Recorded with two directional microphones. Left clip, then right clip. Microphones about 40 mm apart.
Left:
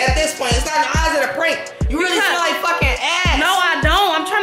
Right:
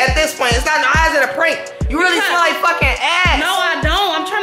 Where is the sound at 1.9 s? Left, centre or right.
Right.